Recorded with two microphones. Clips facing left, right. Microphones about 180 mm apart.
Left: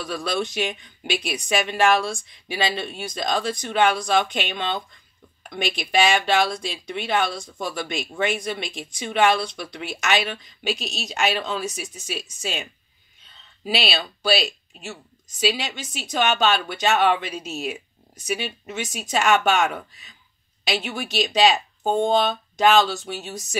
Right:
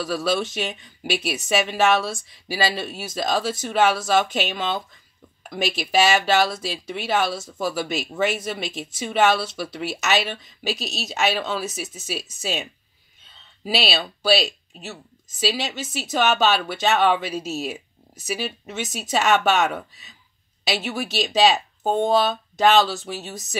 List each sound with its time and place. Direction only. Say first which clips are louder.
0.0 s speech: right 3 dB; 5° right (ahead or behind)
13.7 s speech: right 1 dB; centre (ahead or behind)